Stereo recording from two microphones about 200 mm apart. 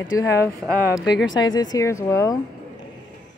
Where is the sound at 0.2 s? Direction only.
15° left (ahead or behind).